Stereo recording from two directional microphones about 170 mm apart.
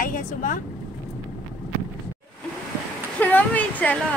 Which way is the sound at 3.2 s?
10° left (ahead or behind).